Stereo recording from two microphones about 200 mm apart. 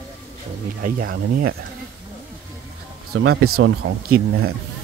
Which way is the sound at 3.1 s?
90° right.